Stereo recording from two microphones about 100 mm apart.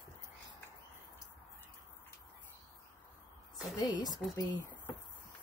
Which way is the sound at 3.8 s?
45° left (ahead or behind).